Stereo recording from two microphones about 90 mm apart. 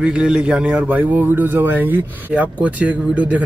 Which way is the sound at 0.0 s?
10° right (ahead or behind).